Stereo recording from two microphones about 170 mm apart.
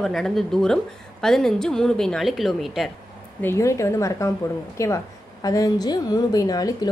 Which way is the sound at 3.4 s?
15° left (ahead or behind).